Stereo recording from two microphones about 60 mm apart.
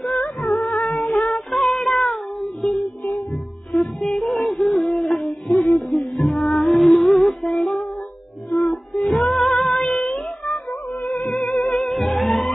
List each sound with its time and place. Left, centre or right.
0.0 s music: centre
0.5 s a sound: left
1.5 s music: centre
2.8 s music: left
3.7 s music: centre
8.5 s female singing: centre
10.4 s music: left
11.2 s music: centre